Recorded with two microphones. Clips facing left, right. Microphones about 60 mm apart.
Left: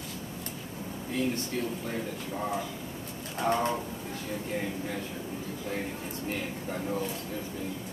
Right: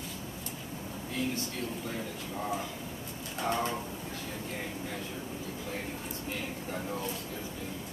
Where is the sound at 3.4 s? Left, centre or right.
Left.